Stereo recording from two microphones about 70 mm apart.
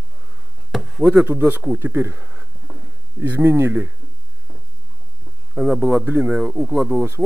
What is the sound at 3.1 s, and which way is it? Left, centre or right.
Speech, right.